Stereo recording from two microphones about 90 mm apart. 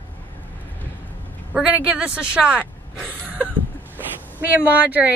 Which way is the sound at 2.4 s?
10° right (ahead or behind).